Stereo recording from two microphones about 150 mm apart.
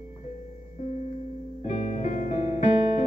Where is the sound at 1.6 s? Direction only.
50° left (ahead or behind).